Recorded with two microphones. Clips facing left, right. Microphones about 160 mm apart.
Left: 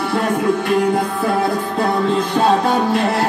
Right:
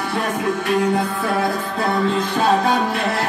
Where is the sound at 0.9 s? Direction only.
35° left (ahead or behind).